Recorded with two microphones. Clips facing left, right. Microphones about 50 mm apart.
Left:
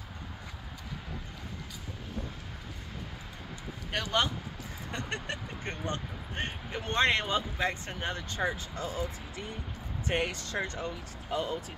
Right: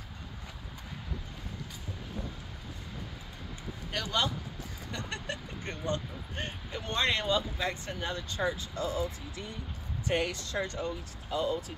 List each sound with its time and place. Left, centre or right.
3.9 s speech: left